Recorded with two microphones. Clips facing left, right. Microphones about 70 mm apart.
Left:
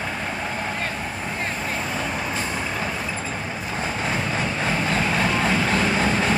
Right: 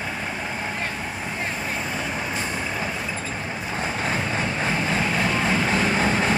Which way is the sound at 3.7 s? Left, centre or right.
Centre.